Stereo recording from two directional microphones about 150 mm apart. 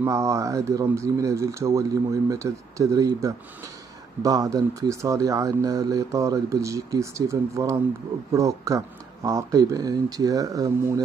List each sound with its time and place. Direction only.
0.0 s speech: 20° right (ahead or behind)